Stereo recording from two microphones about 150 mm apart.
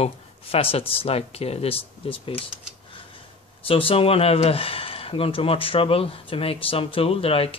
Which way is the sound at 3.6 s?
35° left (ahead or behind).